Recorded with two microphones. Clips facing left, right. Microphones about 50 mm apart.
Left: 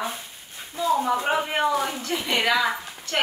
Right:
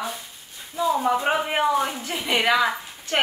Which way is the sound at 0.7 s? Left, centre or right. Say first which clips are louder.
Right 1 dB; centre.